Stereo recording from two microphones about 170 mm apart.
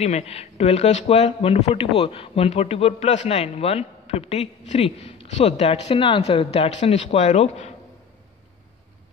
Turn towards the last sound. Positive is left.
turn(degrees=40)  # may be behind; listen again after turning